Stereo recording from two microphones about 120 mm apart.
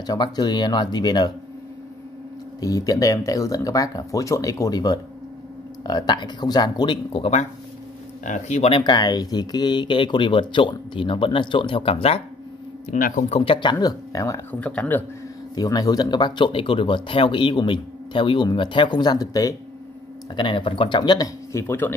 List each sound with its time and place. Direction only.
0.0 s speech: 35° left (ahead or behind)
2.6 s speech: 30° left (ahead or behind)
8.3 s speech: 80° left; by 8.8 s 60° left (ahead or behind)
8.8 s speech: 35° left (ahead or behind); by 12.2 s 55° left (ahead or behind)
12.9 s speech: 90° left
13.4 s speech: 45° left (ahead or behind); by 14.4 s 30° left (ahead or behind)
14.5 s speech: 15° left (ahead or behind)
15.5 s speech: 30° left (ahead or behind)
20.3 s speech: 45° left (ahead or behind); by 21.9 s 20° left (ahead or behind)